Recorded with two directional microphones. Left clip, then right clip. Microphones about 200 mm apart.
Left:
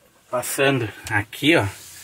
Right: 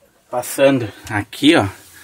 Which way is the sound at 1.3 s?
65° right (ahead or behind).